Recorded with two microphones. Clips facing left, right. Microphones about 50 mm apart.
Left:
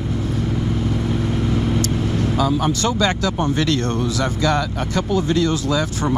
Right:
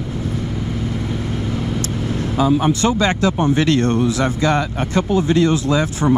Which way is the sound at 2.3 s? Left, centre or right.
Right.